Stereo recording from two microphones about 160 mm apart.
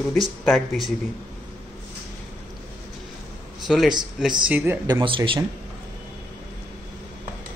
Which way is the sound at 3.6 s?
5° right (ahead or behind).